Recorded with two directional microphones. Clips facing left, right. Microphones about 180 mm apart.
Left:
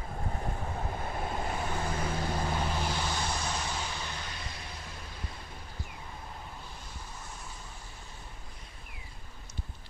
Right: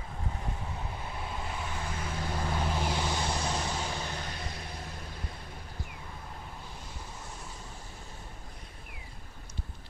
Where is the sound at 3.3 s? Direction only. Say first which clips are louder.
Right 2 dB; 30° right (ahead or behind); by 4.8 s 50° right (ahead or behind).